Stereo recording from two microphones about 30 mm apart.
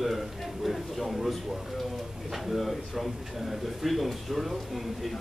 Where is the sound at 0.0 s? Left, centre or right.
Centre.